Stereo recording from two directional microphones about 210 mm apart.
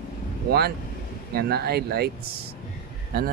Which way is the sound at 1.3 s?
50° right (ahead or behind).